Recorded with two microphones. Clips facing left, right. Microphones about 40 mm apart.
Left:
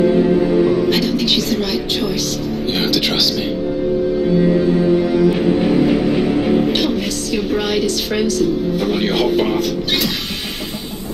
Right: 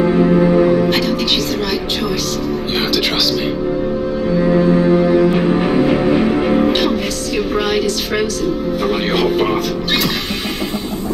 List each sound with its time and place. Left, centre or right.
0.4 s music: right
0.8 s a woman's voice: centre
5.3 s music: right
6.7 s a woman's voice: centre